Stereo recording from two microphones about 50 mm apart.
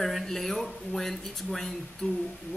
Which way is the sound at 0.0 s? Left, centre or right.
Centre.